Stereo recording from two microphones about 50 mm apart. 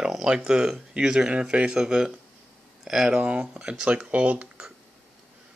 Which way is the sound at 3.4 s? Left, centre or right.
Centre.